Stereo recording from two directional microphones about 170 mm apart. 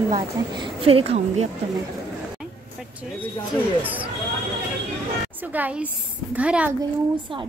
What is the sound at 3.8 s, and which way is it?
Speech, 10° right (ahead or behind).